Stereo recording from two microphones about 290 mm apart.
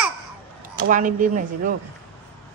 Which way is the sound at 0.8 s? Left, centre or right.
Right.